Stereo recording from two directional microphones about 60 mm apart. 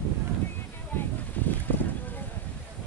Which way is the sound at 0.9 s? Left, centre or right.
Left.